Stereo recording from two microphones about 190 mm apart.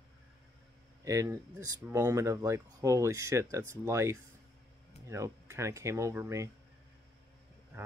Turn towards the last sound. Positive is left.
turn(degrees=-15)  # may be behind; listen again after turning